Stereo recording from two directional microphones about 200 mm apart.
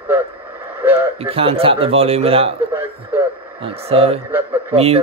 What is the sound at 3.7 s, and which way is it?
Speech, 30° right (ahead or behind).